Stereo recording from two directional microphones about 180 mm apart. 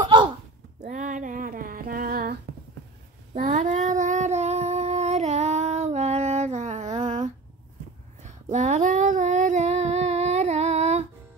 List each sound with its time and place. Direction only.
0.0 s a sound: 25° right (ahead or behind)
0.8 s female singing: 45° right (ahead or behind)
3.3 s child singing: 45° right (ahead or behind)
8.2 s female singing: 40° right (ahead or behind)